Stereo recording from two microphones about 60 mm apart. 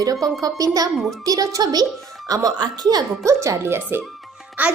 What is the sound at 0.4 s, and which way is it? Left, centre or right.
A child's voice, right.